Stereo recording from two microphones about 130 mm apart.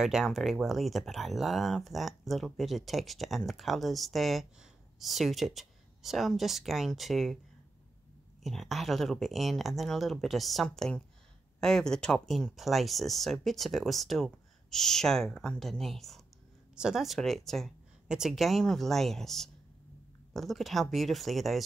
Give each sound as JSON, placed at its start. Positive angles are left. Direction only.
{"t": 0.0, "sound": "speech", "side_deg": 0}
{"t": 8.5, "sound": "speech", "side_deg": 0}